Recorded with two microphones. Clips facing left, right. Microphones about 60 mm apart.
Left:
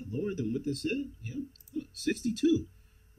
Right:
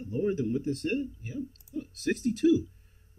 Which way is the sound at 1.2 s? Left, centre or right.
Centre.